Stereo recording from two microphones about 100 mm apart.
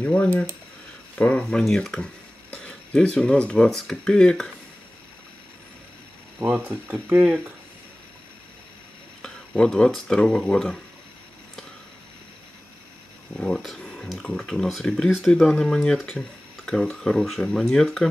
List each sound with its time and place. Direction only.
0.0 s speech: 10° left (ahead or behind)
1.4 s speech: centre (ahead or behind)
6.4 s speech: 30° right (ahead or behind)
6.9 s speech: 20° right (ahead or behind)
9.2 s speech: 5° left (ahead or behind)
13.4 s speech: 5° left (ahead or behind)